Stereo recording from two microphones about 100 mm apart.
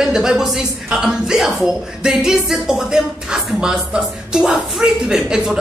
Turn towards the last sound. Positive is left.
turn(degrees=-5)  # may be behind; listen again after turning